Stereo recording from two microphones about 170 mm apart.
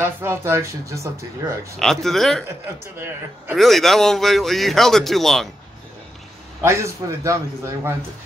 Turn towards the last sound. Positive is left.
turn(degrees=-15)  # may be behind; listen again after turning